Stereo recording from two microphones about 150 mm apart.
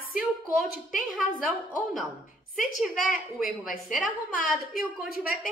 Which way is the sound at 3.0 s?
65° left (ahead or behind).